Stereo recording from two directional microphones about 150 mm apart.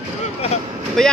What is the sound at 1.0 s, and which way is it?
Speech, centre (ahead or behind).